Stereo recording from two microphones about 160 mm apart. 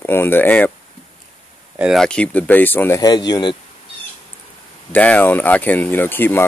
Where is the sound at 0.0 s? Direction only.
15° left (ahead or behind).